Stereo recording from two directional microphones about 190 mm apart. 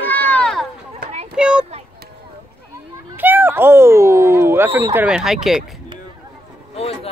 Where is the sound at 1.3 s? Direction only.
5° right (ahead or behind).